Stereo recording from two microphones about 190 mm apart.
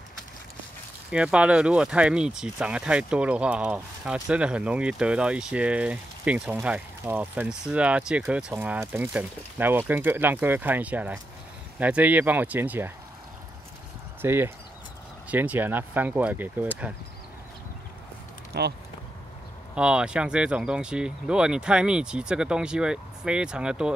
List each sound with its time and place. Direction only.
1.1 s speech: 5° right (ahead or behind)
14.2 s speech: 10° right (ahead or behind)
18.5 s speech: 60° right (ahead or behind)
19.7 s speech: 5° right (ahead or behind)